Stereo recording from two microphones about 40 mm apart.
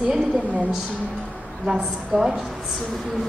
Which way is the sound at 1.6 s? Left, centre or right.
Centre.